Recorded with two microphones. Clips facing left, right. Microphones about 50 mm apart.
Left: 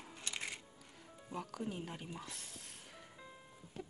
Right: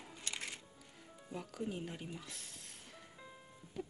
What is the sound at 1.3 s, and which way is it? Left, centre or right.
Speech, centre.